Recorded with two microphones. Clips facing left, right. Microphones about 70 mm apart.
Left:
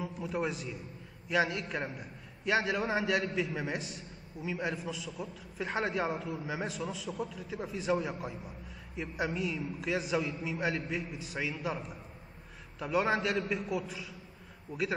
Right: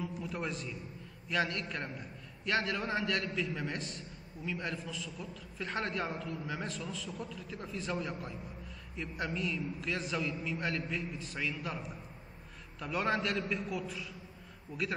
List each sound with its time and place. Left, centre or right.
0.0 s a man's voice: centre